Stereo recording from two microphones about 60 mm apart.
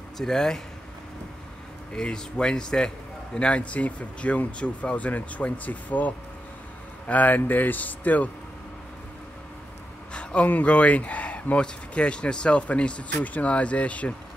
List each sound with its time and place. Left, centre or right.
0.2 s speech: centre
2.0 s speech: centre
10.1 s speech: left